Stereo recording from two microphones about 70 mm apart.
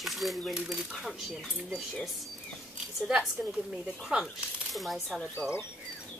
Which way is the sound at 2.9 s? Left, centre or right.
Centre.